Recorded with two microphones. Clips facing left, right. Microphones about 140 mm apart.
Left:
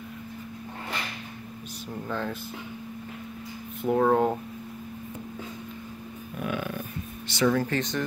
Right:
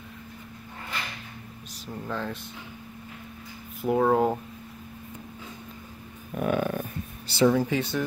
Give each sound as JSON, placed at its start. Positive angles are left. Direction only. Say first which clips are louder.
{"t": 1.9, "sound": "speech", "louder": "left 1 dB", "side_deg": 0}
{"t": 3.8, "sound": "speech", "louder": "even", "side_deg": -5}
{"t": 6.3, "sound": "a sound", "louder": "right 5 dB", "side_deg": -45}
{"t": 7.4, "sound": "speech", "louder": "right 2 dB", "side_deg": -10}